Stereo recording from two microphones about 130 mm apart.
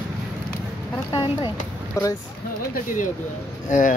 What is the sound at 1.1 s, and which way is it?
Speech, 40° left (ahead or behind).